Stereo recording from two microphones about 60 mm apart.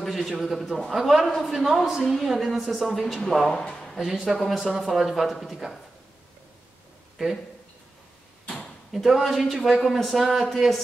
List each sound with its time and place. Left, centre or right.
0.0 s a sound: centre
0.4 s speech: centre
3.5 s speech: centre
3.9 s speech: centre
8.9 s speech: centre